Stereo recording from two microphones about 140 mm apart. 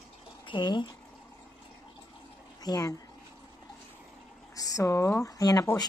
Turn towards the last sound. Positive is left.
turn(degrees=25)  # may be behind; listen again after turning